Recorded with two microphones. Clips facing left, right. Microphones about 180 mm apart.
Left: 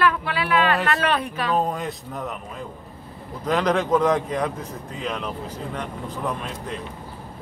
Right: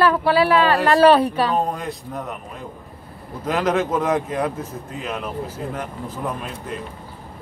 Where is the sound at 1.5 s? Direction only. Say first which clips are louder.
Right 1 dB; centre (ahead or behind).